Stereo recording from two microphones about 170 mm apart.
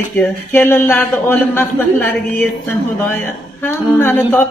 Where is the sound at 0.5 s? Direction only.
15° left (ahead or behind).